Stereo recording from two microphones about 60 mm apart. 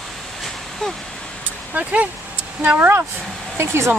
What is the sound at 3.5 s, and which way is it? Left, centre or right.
Speech, right.